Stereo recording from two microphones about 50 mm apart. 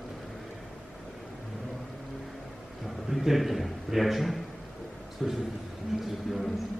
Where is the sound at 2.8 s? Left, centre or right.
Centre.